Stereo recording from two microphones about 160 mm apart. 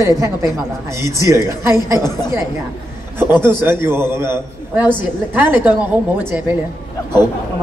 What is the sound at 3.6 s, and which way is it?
A man's voice, 15° right (ahead or behind).